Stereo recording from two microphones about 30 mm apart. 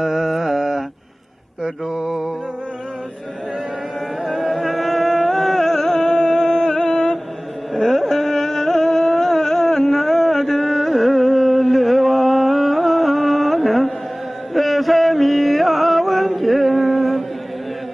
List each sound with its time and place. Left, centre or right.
0.0 s mantra: centre
2.0 s mantra: centre
4.2 s music: centre
5.9 s music: centre
6.6 s a sound: left; by 13.9 s centre
14.5 s music: centre